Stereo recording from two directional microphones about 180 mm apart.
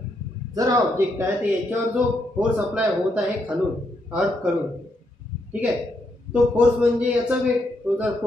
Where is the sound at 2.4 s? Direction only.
5° right (ahead or behind).